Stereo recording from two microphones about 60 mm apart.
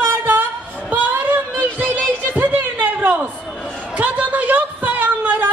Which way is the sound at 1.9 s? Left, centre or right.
Right.